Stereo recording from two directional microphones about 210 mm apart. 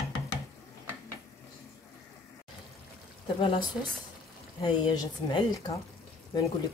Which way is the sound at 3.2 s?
25° left (ahead or behind).